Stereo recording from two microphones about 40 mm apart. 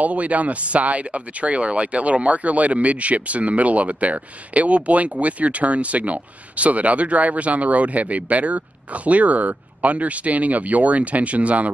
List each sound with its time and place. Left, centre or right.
0.0 s speech: right